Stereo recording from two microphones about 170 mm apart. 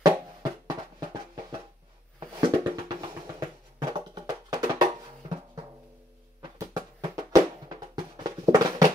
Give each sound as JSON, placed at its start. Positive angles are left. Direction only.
{"t": 0.0, "sound": "music", "side_deg": -20}
{"t": 2.1, "sound": "a sound", "side_deg": -25}
{"t": 3.9, "sound": "music", "side_deg": -25}
{"t": 6.6, "sound": "music", "side_deg": -20}